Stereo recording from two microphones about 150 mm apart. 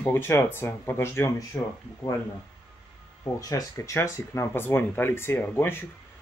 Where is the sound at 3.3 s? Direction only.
25° left (ahead or behind).